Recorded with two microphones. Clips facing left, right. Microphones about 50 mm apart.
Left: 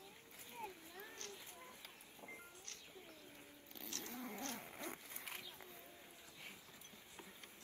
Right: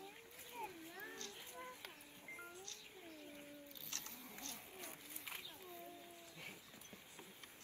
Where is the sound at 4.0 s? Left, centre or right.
Left.